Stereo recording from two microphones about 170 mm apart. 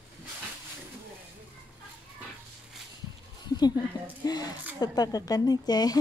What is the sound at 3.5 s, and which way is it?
Speech, 25° left (ahead or behind).